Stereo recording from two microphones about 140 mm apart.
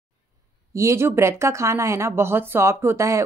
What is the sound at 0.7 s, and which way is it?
Speech, 20° right (ahead or behind).